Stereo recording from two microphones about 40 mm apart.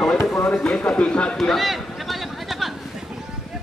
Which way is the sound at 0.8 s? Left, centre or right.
Left.